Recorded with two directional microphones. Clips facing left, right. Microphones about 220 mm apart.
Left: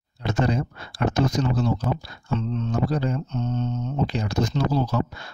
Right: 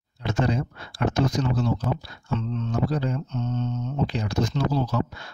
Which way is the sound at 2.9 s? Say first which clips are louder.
Left 2 dB; 40° left (ahead or behind).